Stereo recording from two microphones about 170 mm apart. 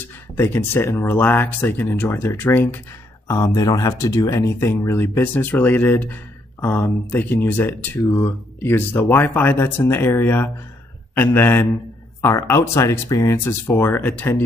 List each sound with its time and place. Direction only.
0.4 s speech: 10° left (ahead or behind)